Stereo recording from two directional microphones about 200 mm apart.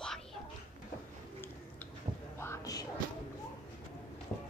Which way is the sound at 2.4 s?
15° left (ahead or behind).